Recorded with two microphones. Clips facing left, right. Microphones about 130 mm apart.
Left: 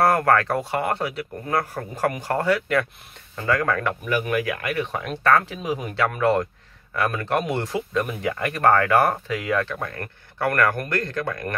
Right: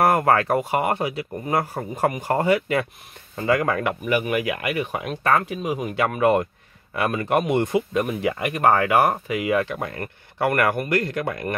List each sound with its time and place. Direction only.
0.0 s speech: 20° right (ahead or behind); by 5.7 s 5° right (ahead or behind)
5.9 s speech: 15° right (ahead or behind)